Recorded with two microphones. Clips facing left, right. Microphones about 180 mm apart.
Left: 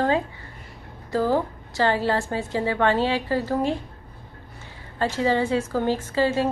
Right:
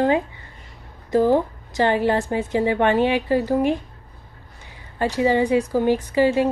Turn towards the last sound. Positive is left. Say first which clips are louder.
# right 4 dB
turn(degrees=-15)  # may be behind; listen again after turning